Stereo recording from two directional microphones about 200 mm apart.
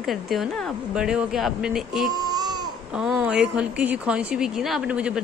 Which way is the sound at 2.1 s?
20° right (ahead or behind).